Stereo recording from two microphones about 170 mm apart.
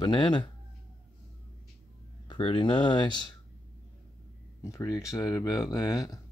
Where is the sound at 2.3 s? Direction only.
30° left (ahead or behind).